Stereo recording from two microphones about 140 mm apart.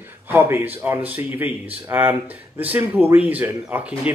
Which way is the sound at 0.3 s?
15° right (ahead or behind).